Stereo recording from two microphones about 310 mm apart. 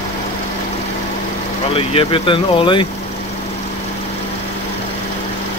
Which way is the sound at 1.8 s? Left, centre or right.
Centre.